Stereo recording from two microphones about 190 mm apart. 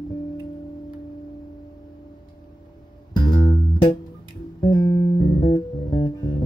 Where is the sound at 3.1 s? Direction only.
20° left (ahead or behind).